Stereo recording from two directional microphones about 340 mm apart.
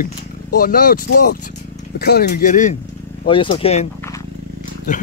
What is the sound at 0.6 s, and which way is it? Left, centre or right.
Speech, left.